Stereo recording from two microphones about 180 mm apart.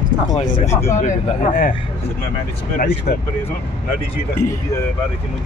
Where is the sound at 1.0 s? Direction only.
45° left (ahead or behind).